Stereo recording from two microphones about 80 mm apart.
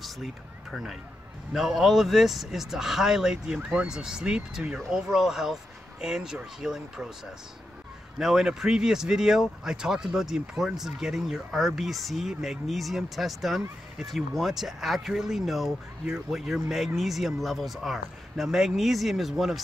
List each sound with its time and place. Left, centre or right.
0.0 s speech: centre
8.2 s speech: centre